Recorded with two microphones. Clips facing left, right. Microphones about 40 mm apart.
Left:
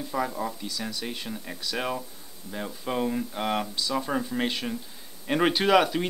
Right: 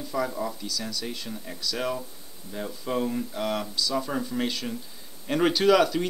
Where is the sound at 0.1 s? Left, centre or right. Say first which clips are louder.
Right 1 dB; left.